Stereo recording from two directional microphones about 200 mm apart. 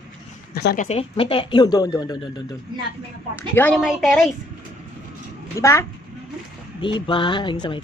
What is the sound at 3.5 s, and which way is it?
Speech, 10° left (ahead or behind).